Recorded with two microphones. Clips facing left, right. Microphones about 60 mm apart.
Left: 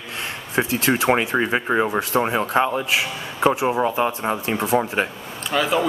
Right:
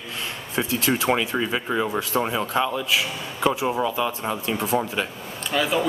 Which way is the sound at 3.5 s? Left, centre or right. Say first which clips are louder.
Left 3 dB; left.